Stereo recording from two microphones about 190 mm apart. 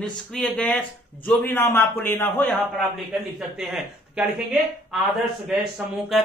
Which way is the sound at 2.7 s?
Centre (ahead or behind).